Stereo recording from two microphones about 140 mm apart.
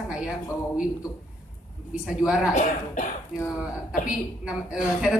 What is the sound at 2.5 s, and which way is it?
Speech, 60° left (ahead or behind).